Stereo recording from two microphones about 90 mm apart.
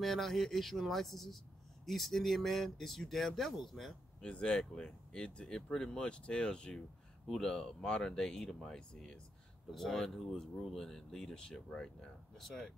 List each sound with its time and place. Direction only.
0.0 s speech: 5° left (ahead or behind)